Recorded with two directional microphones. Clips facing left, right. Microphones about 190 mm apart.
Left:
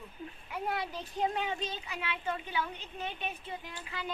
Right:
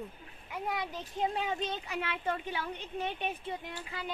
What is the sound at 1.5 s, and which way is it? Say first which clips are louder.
A woman's voice: right 3 dB; 60° right (ahead or behind).